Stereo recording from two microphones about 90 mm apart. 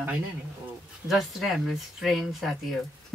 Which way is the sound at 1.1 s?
Centre (ahead or behind).